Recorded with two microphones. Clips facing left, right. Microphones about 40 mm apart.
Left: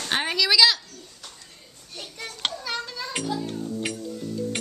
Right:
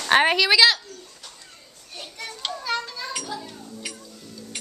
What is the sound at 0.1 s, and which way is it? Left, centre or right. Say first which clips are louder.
Speech: right 9 dB; right.